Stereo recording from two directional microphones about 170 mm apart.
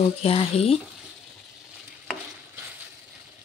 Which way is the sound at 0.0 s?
35° left (ahead or behind).